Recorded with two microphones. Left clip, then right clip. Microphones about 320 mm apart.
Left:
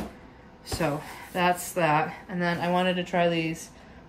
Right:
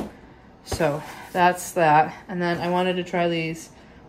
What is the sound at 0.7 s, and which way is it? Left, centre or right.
Speech, centre.